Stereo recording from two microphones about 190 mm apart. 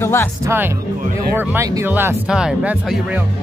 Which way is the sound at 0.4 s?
15° right (ahead or behind).